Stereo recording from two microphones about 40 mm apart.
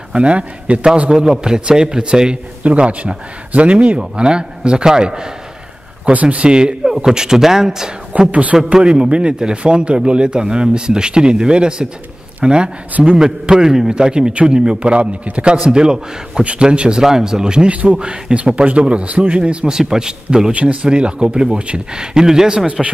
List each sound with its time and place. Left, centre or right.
0.1 s speech: right
1.1 s a man's voice: centre
2.6 s speech: right
4.0 s a man's voice: centre
8.3 s speech: right
8.7 s a man's voice: centre
14.8 s speech: right
15.5 s speech: right
17.0 s speech: centre
19.7 s a man's voice: centre